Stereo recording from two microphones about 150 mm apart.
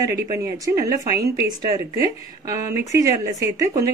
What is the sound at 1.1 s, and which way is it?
Speech, 20° right (ahead or behind).